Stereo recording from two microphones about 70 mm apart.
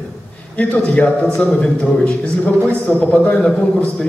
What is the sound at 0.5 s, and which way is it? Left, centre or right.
A man's voice, centre.